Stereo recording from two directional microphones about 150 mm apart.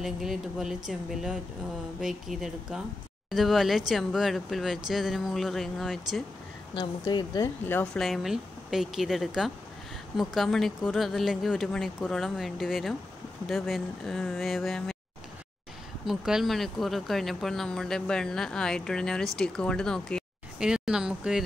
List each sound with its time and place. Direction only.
0.0 s speech: 5° right (ahead or behind)
6.7 s speech: 30° left (ahead or behind)
7.6 s speech: 15° left (ahead or behind)
7.9 s speech: centre (ahead or behind)
16.1 s speech: centre (ahead or behind)